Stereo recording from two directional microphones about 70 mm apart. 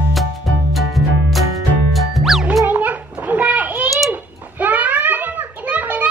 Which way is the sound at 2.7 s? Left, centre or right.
Right.